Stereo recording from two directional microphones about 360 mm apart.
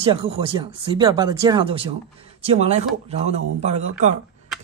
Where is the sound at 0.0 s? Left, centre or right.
Centre.